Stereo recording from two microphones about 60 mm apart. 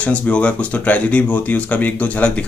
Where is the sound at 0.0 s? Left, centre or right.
Centre.